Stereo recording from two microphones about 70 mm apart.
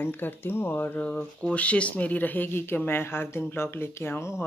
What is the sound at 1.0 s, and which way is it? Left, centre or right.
Speech, centre.